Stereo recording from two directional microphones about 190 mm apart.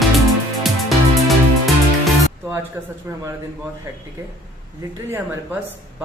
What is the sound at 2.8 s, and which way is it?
Speech, 10° right (ahead or behind).